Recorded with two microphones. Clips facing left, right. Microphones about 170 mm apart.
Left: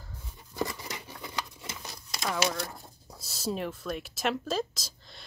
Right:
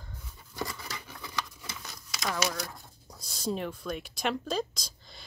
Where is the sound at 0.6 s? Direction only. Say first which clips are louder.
Left 4 dB; 20° left (ahead or behind).